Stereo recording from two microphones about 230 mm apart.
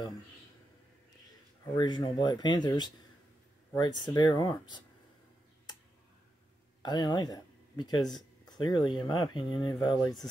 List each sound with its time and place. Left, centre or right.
1.8 s speech: centre
6.8 s speech: centre